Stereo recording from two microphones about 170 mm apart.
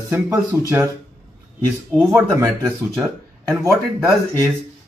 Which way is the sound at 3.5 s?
15° right (ahead or behind).